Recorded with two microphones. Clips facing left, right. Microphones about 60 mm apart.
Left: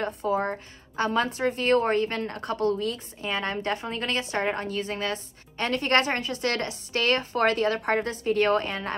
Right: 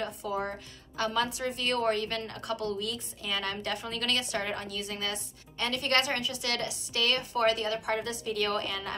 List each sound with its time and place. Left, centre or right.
0.0 s speech: left